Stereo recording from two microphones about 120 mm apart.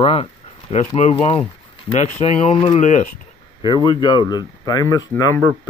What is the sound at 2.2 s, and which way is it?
Speech, 60° left (ahead or behind).